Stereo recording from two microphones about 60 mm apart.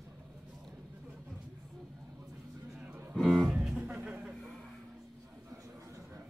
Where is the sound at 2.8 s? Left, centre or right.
Right.